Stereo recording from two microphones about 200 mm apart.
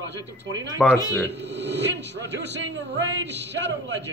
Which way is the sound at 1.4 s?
60° right (ahead or behind).